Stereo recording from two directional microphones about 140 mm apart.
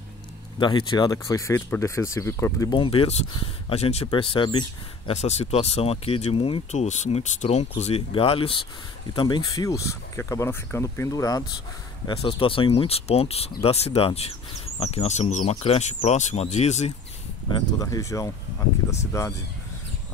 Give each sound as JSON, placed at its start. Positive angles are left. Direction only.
{"t": 0.6, "sound": "speech", "side_deg": 35}
{"t": 2.7, "sound": "speech", "side_deg": 40}
{"t": 5.1, "sound": "speech", "side_deg": 50}
{"t": 12.1, "sound": "speech", "side_deg": 40}
{"t": 17.6, "sound": "speech", "side_deg": 25}